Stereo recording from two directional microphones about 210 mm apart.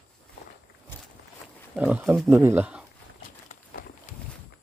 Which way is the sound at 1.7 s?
10° right (ahead or behind).